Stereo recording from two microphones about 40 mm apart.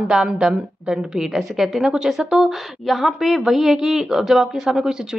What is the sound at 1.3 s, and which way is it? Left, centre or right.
A woman's voice, centre.